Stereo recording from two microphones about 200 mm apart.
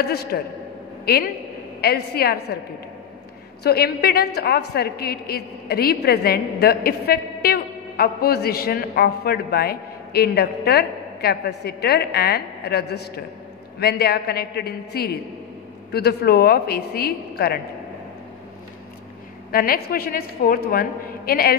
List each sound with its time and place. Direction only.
0.0 s a woman's voice: 50° left (ahead or behind)
3.6 s a woman's voice: 50° left (ahead or behind)
19.5 s a woman's voice: 50° left (ahead or behind)